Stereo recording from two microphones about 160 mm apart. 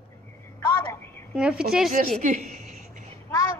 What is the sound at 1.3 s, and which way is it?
Speech, 5° right (ahead or behind).